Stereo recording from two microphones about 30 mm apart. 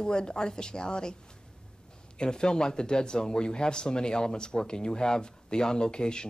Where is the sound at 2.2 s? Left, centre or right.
Left.